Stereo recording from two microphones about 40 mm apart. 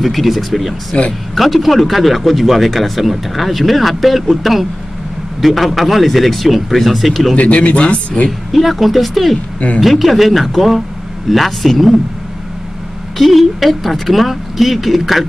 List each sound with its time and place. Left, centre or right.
0.0 s a man's voice: centre
7.3 s a man's voice: left
8.3 s a man's voice: centre
13.2 s a man's voice: centre